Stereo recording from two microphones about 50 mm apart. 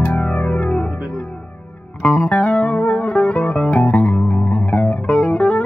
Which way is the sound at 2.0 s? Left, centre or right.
Left.